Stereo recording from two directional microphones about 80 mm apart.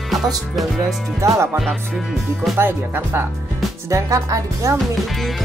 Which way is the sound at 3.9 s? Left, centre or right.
Right.